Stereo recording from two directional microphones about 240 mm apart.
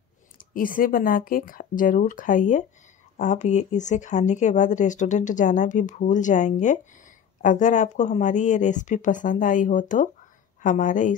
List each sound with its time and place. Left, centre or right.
0.4 s speech: left